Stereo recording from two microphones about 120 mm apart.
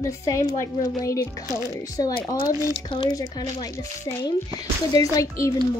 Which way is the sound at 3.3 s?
30° left (ahead or behind).